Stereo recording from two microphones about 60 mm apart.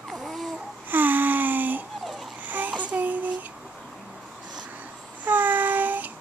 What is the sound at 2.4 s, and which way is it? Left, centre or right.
Child singing, right.